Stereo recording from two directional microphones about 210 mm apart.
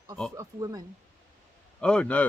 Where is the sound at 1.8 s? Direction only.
5° left (ahead or behind).